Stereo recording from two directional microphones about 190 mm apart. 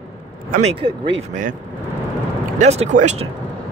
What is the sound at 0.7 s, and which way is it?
Speech, 25° right (ahead or behind).